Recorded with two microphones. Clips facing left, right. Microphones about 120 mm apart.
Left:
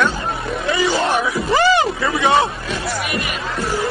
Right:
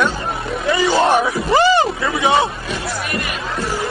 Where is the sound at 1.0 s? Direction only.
30° right (ahead or behind).